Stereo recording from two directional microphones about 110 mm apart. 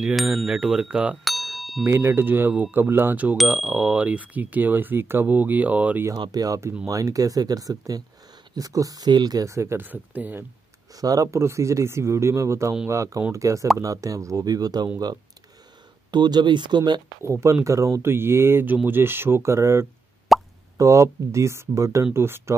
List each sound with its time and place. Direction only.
0.0 s a sound: centre (ahead or behind)
1.2 s ding: centre (ahead or behind)
1.9 s speech: 25° right (ahead or behind)
3.3 s speech: 5° right (ahead or behind)
6.1 s speech: 40° right (ahead or behind); by 10.4 s 15° right (ahead or behind)
11.0 s speech: 35° right (ahead or behind)
16.1 s speech: 40° right (ahead or behind)
17.2 s speech: 25° right (ahead or behind)
20.3 s plop: centre (ahead or behind)
20.7 s speech: 30° right (ahead or behind)